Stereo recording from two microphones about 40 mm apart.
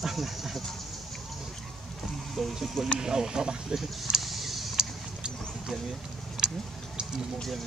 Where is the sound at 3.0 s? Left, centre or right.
Centre.